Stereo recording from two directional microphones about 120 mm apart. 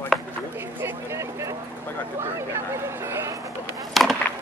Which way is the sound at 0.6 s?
20° right (ahead or behind).